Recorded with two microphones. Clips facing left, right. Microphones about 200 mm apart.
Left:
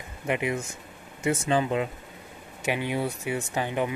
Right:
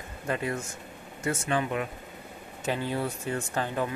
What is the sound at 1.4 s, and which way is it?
Speech, 25° left (ahead or behind).